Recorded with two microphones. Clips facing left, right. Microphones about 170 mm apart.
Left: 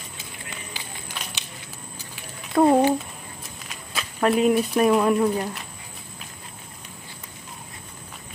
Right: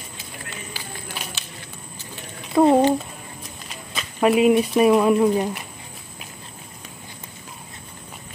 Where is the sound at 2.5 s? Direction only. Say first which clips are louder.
Right 2 dB; centre (ahead or behind).